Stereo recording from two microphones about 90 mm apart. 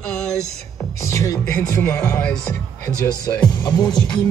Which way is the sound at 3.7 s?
50° left (ahead or behind).